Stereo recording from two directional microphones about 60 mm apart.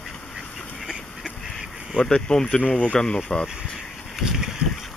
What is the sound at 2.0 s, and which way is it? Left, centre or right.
Speech, centre.